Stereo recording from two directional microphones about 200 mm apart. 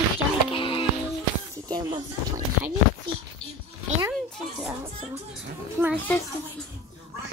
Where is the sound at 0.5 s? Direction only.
25° left (ahead or behind).